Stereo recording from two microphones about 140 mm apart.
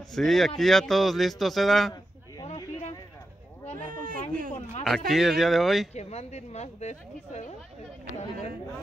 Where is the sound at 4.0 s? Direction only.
80° right.